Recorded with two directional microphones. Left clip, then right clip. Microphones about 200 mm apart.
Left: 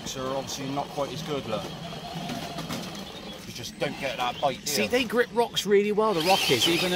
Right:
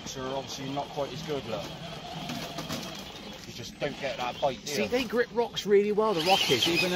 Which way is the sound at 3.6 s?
35° left (ahead or behind).